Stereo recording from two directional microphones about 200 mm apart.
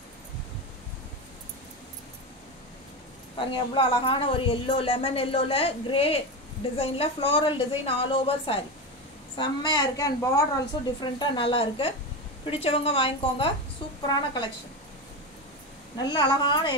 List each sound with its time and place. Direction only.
3.3 s a woman's voice: 25° left (ahead or behind)
16.0 s a woman's voice: 20° left (ahead or behind)